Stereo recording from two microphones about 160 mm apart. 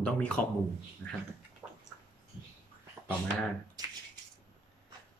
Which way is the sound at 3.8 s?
25° right (ahead or behind).